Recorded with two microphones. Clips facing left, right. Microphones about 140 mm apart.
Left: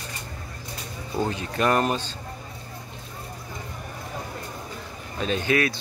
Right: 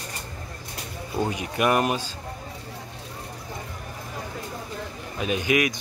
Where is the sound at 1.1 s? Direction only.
15° right (ahead or behind).